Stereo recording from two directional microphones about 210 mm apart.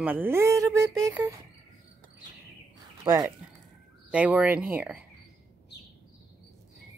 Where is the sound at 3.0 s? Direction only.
15° right (ahead or behind).